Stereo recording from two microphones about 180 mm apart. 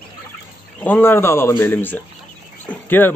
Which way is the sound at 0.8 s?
10° left (ahead or behind).